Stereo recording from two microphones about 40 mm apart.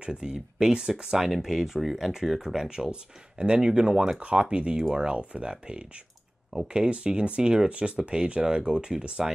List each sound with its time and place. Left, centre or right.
0.0 s speech: right
1.1 s speech: centre
6.9 s speech: right